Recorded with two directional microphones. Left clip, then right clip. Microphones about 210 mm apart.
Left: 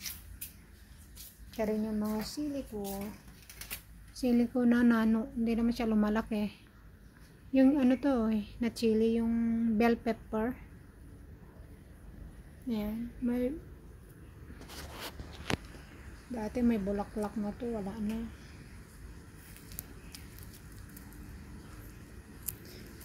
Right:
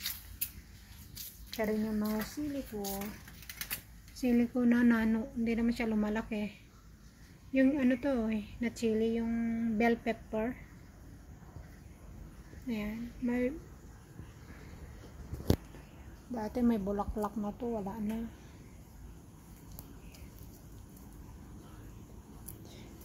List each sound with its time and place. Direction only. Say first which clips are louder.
1.6 s speech: left 1 dB; 5° left (ahead or behind)
2.3 s speech: left 1 dB; 10° right (ahead or behind)
4.1 s a woman's voice: left 1 dB; 10° left (ahead or behind)
7.5 s speech: left 2 dB; 20° left (ahead or behind)
12.6 s a woman's voice: left 2 dB; 15° left (ahead or behind)
16.3 s speech: even; 5° left (ahead or behind)